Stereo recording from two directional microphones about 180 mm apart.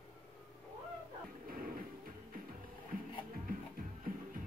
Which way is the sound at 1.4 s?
50° right (ahead or behind).